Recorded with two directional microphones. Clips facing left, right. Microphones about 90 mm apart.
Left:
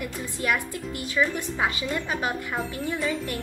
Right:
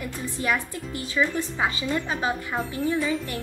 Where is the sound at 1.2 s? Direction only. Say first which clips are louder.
Even; 5° right (ahead or behind).